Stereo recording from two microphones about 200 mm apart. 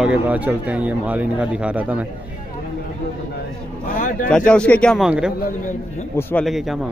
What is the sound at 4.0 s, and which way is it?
Speech, 40° left (ahead or behind).